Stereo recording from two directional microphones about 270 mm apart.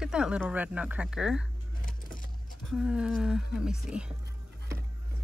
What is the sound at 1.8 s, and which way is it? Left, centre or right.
Vehicle, left.